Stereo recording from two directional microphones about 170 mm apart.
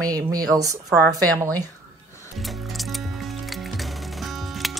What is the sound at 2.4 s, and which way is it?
Music, centre (ahead or behind).